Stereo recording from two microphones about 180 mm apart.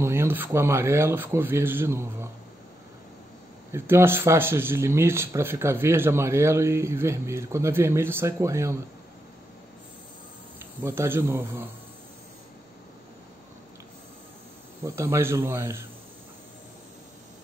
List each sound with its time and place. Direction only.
0.0 s speech: 15° right (ahead or behind)
3.7 s speech: 15° right (ahead or behind)
10.6 s speech: 15° right (ahead or behind)
14.9 s speech: 15° right (ahead or behind)